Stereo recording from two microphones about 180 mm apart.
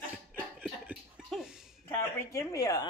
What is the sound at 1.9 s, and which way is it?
Speech, 15° left (ahead or behind).